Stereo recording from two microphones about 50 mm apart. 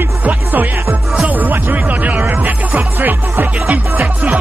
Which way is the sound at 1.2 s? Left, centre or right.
Right.